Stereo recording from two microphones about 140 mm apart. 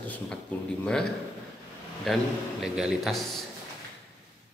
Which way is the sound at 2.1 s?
Centre (ahead or behind).